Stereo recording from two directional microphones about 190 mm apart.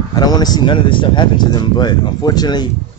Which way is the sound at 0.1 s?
20° left (ahead or behind).